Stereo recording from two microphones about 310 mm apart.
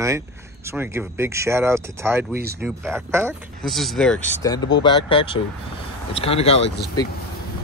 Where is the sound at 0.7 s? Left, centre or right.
Centre.